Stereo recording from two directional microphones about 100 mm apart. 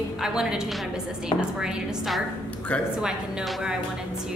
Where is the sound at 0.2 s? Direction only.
5° right (ahead or behind).